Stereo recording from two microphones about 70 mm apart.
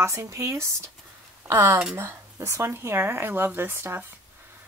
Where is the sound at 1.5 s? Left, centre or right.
Right.